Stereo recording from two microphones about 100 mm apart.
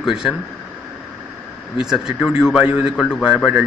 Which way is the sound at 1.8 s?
5° right (ahead or behind).